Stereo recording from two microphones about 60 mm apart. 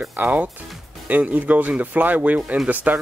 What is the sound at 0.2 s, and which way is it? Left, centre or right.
Speech, right.